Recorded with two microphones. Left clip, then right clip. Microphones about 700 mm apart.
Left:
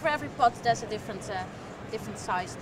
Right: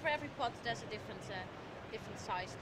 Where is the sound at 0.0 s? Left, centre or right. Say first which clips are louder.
Left 12 dB; left.